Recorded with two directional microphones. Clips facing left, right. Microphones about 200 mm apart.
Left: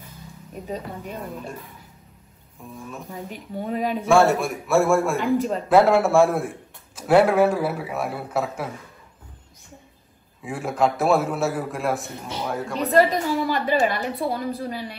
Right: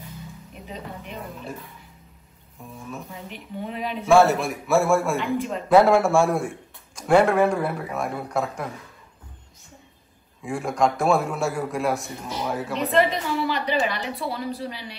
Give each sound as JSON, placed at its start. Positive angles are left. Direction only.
{"t": 0.7, "sound": "a woman's voice", "side_deg": 45}
{"t": 2.6, "sound": "a man's voice", "side_deg": 0}
{"t": 3.3, "sound": "a woman's voice", "side_deg": 45}
{"t": 4.1, "sound": "a man's voice", "side_deg": 0}
{"t": 10.4, "sound": "a man's voice", "side_deg": 5}
{"t": 12.9, "sound": "a woman's voice", "side_deg": 45}